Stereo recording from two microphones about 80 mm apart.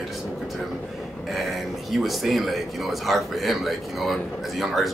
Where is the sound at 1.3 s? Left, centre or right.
Centre.